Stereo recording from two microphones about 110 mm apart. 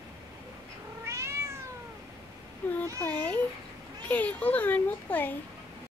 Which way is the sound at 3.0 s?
15° left (ahead or behind).